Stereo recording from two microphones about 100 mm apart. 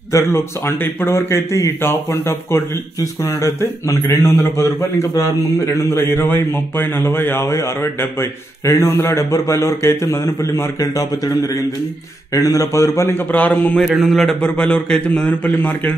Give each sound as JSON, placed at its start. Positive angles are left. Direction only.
{"t": 0.1, "sound": "a man's voice", "side_deg": 25}
{"t": 13.3, "sound": "a man's voice", "side_deg": 15}
{"t": 13.8, "sound": "speech", "side_deg": 0}
{"t": 14.4, "sound": "a man's voice", "side_deg": 10}